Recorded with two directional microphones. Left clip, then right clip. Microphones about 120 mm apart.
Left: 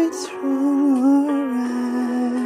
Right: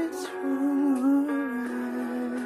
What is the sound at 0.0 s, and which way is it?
Music, 35° left (ahead or behind).